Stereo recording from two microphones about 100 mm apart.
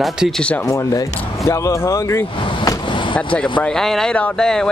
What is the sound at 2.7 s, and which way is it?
Vehicle, 50° left (ahead or behind).